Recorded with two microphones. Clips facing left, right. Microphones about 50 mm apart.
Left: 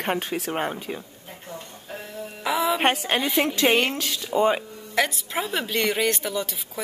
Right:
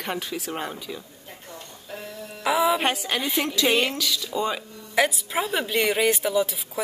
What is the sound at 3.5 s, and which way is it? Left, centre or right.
A woman's voice, left.